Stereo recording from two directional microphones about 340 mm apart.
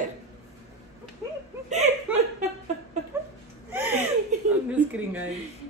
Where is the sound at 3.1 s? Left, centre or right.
Centre.